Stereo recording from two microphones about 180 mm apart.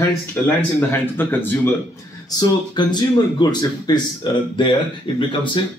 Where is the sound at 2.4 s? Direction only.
25° left (ahead or behind).